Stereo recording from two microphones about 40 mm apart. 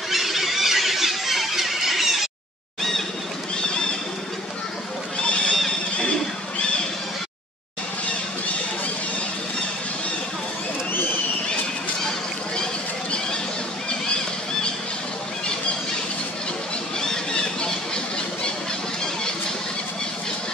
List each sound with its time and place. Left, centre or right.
0.1 s squeal: centre
5.2 s neigh: left
17.0 s squawk: centre